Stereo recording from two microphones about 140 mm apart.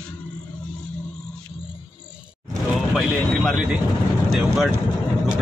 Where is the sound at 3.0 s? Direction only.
5° right (ahead or behind).